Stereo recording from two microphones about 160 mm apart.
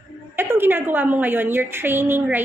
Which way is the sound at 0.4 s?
15° right (ahead or behind).